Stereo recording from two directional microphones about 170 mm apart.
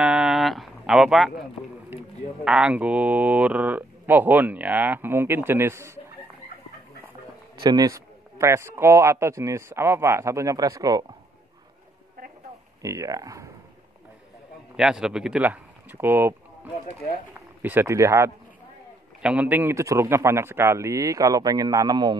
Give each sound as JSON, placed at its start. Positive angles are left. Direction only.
{"t": 0.0, "sound": "a sound", "side_deg": -5}
{"t": 2.4, "sound": "speech", "side_deg": -5}
{"t": 7.6, "sound": "speech", "side_deg": -20}
{"t": 12.8, "sound": "speech", "side_deg": -20}
{"t": 14.8, "sound": "speech", "side_deg": -5}
{"t": 17.6, "sound": "speech", "side_deg": -10}